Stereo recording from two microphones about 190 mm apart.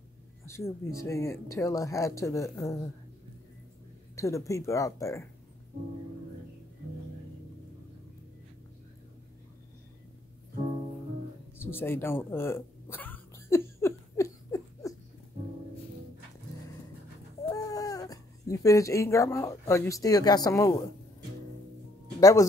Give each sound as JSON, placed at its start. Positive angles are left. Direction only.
{"t": 0.5, "sound": "speech", "side_deg": 15}
{"t": 4.2, "sound": "speech", "side_deg": 15}
{"t": 11.5, "sound": "a sound", "side_deg": 10}
{"t": 17.5, "sound": "speech", "side_deg": 20}
{"t": 22.2, "sound": "speech", "side_deg": 15}